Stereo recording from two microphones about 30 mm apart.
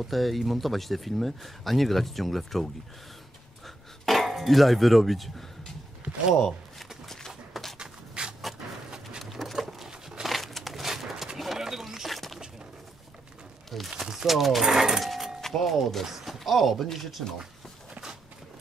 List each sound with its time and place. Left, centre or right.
0.0 s speech: centre
3.6 s a sound: centre
7.8 s a sound: right
9.2 s a sound: centre
10.2 s crumpling: centre
10.9 s horse: centre
11.5 s a sound: centre
12.1 s music: centre
13.7 s speech: centre
14.1 s speech: centre
14.7 s speech: centre
15.4 s speech: centre